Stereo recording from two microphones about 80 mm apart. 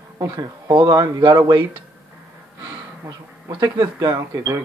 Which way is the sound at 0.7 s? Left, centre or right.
Right.